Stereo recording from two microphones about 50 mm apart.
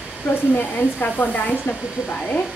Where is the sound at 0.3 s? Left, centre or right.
Left.